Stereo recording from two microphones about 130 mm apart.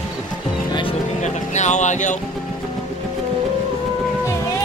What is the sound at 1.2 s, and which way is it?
Speech, 65° left (ahead or behind).